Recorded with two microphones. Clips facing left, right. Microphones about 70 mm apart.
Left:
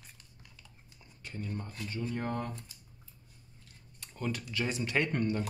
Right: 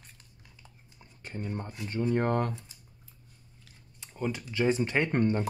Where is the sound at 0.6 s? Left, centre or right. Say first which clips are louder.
Right 2 dB; right.